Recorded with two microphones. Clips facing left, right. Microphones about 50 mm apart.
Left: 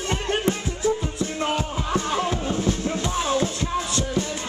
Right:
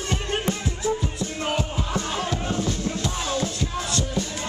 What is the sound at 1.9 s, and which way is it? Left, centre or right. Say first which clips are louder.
Music: left 5 dB; left.